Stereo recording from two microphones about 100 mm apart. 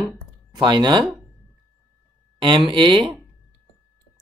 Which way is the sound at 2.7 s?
55° right (ahead or behind).